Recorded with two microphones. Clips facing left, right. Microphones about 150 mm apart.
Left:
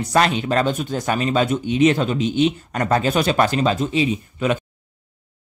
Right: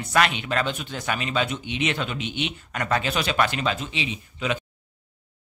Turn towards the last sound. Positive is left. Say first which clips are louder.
# left 7 dB
turn(degrees=50)  # may be behind; listen again after turning